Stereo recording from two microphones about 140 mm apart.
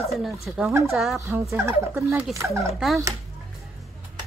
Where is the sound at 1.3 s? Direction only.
20° right (ahead or behind).